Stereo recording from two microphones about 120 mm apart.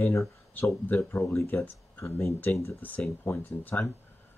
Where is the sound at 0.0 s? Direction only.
20° left (ahead or behind).